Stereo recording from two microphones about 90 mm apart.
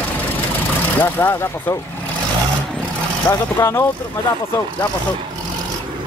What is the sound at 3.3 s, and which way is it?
Speech, 45° left (ahead or behind).